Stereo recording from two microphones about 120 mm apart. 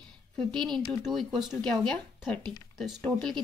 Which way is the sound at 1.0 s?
Centre (ahead or behind).